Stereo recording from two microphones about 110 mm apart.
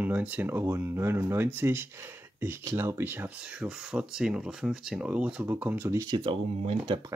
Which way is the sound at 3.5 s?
5° right (ahead or behind).